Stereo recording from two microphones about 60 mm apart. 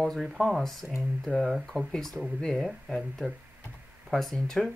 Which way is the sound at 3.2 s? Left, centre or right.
Centre.